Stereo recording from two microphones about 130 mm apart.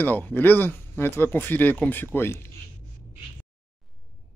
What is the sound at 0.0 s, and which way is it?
Speech, 15° left (ahead or behind).